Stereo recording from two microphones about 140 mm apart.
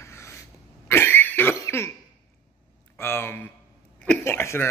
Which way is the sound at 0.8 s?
15° left (ahead or behind).